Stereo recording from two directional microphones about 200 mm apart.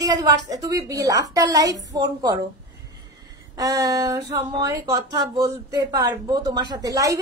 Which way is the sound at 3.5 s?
15° right (ahead or behind).